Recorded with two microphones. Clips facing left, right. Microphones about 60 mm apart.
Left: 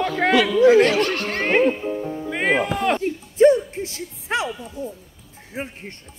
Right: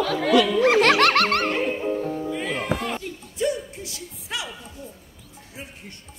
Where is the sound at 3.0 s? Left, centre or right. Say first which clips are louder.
Left 12 dB; left.